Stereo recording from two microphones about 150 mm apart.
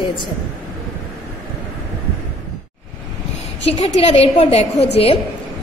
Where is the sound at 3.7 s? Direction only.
40° left (ahead or behind).